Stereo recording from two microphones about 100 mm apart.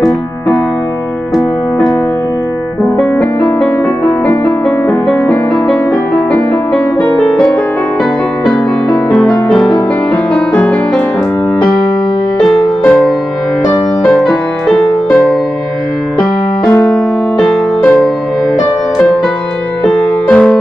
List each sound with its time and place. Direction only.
2.8 s music: centre (ahead or behind)
4.6 s music: centre (ahead or behind); by 10.8 s 15° left (ahead or behind)
12.4 s music: 15° left (ahead or behind)
16.9 s music: 15° left (ahead or behind)
20.2 s music: 10° left (ahead or behind)